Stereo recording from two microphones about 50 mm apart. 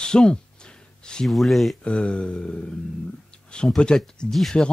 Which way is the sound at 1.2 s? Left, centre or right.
Centre.